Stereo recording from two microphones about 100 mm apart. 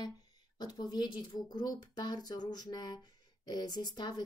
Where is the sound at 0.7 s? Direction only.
45° left (ahead or behind).